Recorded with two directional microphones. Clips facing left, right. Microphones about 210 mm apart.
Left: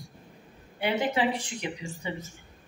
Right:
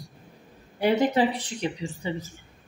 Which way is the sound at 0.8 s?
40° right (ahead or behind).